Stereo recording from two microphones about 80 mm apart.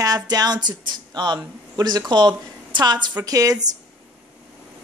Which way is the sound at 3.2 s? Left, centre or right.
Right.